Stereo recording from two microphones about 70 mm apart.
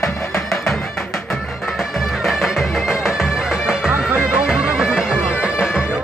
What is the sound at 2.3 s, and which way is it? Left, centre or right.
Music, centre.